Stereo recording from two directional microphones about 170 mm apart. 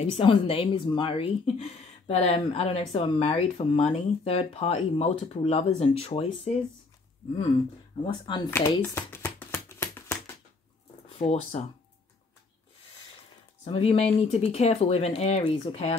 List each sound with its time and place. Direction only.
0.0 s speech: 30° left (ahead or behind)
8.0 s speech: 25° left (ahead or behind)
8.5 s a sound: 15° left (ahead or behind)
11.1 s speech: 35° left (ahead or behind)
13.7 s speech: 35° left (ahead or behind)